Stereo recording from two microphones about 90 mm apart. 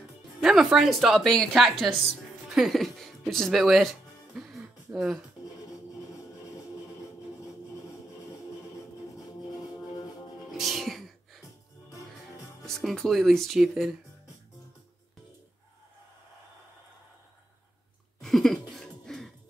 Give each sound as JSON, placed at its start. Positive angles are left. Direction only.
{"t": 0.4, "sound": "speech", "side_deg": -5}
{"t": 4.4, "sound": "throat clearing", "side_deg": 0}
{"t": 10.5, "sound": "music", "side_deg": 0}
{"t": 12.6, "sound": "speech", "side_deg": 5}
{"t": 18.2, "sound": "a sound", "side_deg": 5}